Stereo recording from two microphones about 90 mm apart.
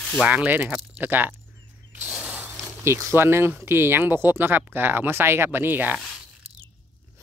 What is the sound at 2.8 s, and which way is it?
Speech, 30° right (ahead or behind).